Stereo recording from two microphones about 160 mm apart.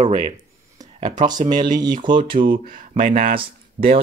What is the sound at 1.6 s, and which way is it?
Speech, 25° right (ahead or behind).